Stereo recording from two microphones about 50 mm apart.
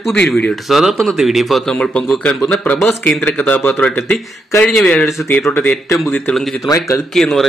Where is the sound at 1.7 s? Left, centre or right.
Left.